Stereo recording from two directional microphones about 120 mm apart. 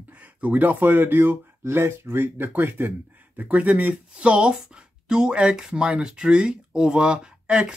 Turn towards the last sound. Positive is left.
turn(degrees=-5)  # may be behind; listen again after turning